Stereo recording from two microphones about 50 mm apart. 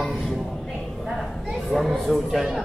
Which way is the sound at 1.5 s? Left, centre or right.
Centre.